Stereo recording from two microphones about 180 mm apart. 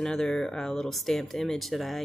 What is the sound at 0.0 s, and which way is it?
Speech, 5° left (ahead or behind).